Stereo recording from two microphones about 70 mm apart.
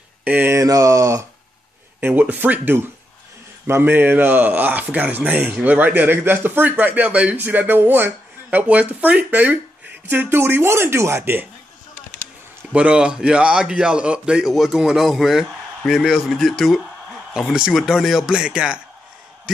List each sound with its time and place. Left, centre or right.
0.2 s mantra: centre
0.5 s mantra: right
2.0 s a man's voice: right
12.7 s a man's voice: centre
17.4 s a man's voice: centre